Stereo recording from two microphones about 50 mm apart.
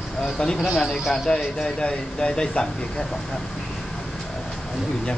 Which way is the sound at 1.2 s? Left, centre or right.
Centre.